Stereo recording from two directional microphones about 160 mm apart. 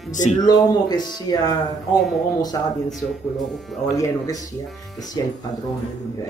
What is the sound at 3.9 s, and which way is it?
Speech, 20° left (ahead or behind).